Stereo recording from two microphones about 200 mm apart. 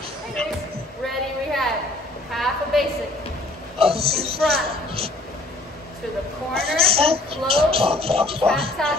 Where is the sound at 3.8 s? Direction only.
30° right (ahead or behind).